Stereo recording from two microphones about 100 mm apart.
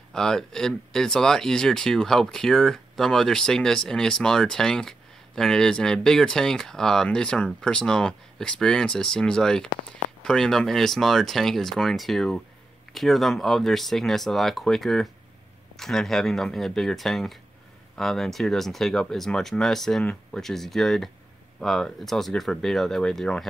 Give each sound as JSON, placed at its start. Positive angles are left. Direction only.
{"t": 0.1, "sound": "speech", "side_deg": 5}